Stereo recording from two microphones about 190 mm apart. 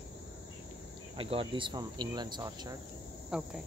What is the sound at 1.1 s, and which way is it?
Speech, 30° right (ahead or behind).